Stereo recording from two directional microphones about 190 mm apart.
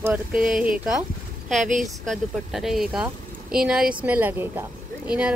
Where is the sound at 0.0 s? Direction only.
5° right (ahead or behind).